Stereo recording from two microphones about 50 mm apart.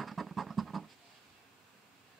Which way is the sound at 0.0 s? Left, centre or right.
Centre.